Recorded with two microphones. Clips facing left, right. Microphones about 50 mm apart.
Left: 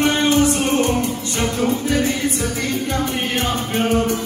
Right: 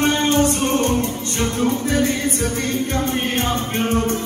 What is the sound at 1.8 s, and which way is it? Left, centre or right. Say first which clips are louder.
Music: even; right.